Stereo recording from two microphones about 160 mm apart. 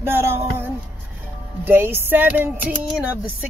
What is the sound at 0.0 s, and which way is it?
Speech, 15° right (ahead or behind).